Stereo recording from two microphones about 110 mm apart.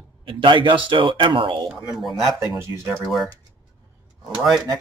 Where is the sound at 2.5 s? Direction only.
25° right (ahead or behind).